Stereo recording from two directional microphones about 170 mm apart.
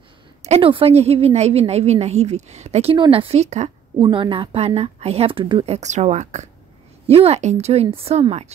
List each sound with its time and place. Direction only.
0.4 s a woman's voice: 35° right (ahead or behind)
4.0 s a woman's voice: 30° right (ahead or behind)
5.8 s a woman's voice: 40° right (ahead or behind)